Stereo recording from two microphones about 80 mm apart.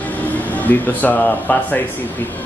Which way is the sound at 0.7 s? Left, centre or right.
Centre.